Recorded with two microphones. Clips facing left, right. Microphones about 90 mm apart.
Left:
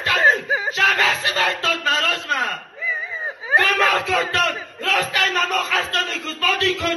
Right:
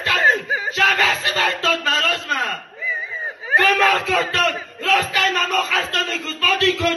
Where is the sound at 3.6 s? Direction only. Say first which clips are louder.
Right 5 dB; 10° left (ahead or behind).